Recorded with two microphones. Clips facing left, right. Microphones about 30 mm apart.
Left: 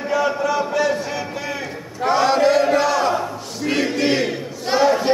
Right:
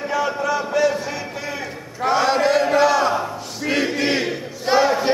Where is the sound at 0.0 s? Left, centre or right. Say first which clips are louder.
Left 2 dB; centre.